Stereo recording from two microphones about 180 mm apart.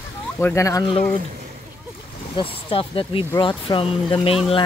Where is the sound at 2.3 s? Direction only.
30° left (ahead or behind).